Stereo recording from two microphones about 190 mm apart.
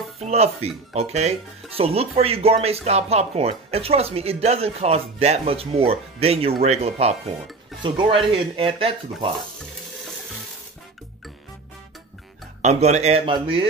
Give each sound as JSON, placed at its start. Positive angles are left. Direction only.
{"t": 0.2, "sound": "speech", "side_deg": -35}
{"t": 12.6, "sound": "speech", "side_deg": -35}